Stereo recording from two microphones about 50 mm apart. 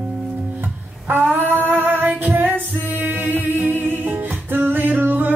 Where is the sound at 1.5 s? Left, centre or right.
Right.